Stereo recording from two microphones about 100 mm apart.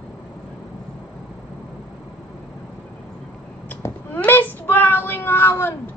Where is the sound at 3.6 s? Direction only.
20° left (ahead or behind).